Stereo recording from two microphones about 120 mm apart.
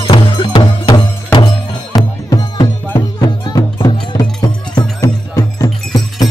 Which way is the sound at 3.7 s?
40° left (ahead or behind).